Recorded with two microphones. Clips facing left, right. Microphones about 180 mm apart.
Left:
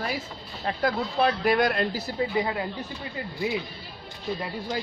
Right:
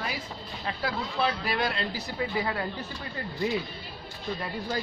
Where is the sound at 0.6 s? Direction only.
45° left (ahead or behind).